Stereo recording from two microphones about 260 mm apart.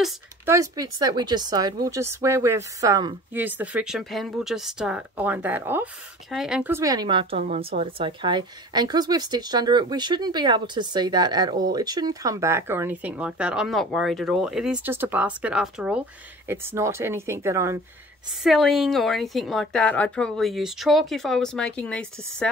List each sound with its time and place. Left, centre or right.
0.0 s speech: centre
18.4 s speech: centre